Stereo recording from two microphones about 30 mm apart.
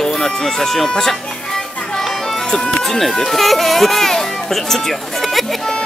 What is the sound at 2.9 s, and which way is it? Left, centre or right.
Speech, centre.